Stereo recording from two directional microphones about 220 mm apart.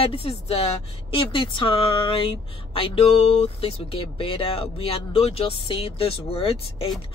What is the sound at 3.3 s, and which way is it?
Speech, 25° left (ahead or behind).